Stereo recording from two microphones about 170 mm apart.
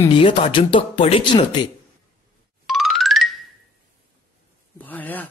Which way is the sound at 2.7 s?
Centre (ahead or behind).